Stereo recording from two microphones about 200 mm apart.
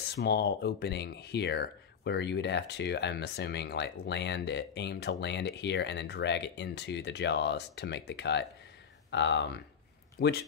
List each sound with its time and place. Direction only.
0.1 s speech: 55° left (ahead or behind)
10.2 s speech: 45° left (ahead or behind)